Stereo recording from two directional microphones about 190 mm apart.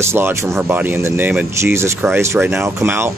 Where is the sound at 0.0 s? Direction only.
15° right (ahead or behind).